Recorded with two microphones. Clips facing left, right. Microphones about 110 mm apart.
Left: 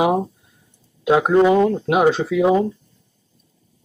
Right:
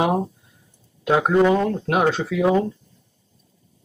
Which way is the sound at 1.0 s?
5° left (ahead or behind).